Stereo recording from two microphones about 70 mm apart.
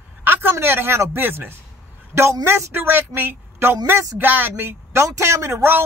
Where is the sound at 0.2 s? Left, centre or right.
Right.